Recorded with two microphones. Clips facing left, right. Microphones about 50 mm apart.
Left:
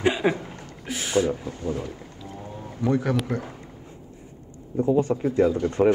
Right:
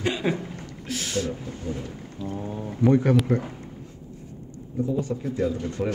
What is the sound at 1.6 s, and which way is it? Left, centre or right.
Speech, left.